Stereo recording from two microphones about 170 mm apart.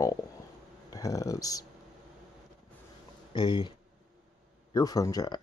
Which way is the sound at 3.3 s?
30° left (ahead or behind).